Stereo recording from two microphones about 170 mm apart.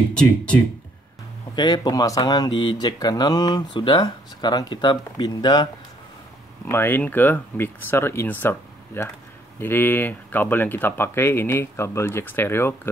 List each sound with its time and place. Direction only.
0.1 s speech: 5° left (ahead or behind)
1.5 s speech: 25° left (ahead or behind)
6.6 s speech: 15° left (ahead or behind)